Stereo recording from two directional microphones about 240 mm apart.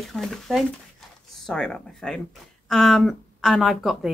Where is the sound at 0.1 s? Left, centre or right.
Centre.